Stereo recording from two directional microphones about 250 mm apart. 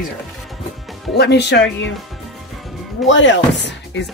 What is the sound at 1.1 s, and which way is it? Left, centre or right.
Speech, left.